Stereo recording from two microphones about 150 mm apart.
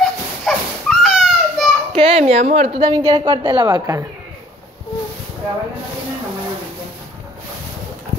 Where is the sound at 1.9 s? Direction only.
40° right (ahead or behind).